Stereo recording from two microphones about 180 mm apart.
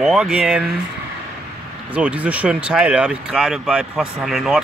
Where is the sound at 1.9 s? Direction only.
5° right (ahead or behind).